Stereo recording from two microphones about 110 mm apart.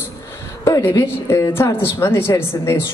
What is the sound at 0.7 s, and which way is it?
Speech, 25° left (ahead or behind).